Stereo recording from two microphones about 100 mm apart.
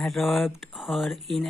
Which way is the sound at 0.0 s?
Centre (ahead or behind).